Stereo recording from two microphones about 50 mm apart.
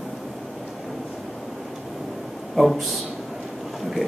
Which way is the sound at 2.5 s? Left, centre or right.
Centre.